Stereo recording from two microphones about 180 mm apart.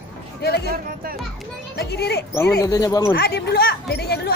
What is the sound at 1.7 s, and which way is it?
Speech, 65° left (ahead or behind).